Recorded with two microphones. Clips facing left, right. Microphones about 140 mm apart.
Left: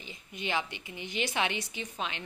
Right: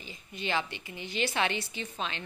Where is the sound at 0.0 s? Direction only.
20° left (ahead or behind).